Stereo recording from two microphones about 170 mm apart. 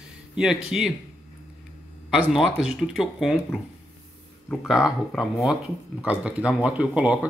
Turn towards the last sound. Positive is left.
turn(degrees=-5)  # may be behind; listen again after turning